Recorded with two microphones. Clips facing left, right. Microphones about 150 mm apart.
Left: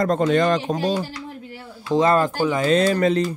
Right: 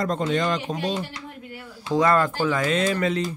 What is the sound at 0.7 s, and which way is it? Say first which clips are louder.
Speech: left 5 dB; 40° left (ahead or behind).